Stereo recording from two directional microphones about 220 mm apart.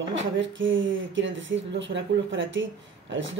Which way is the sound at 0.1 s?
60° right (ahead or behind).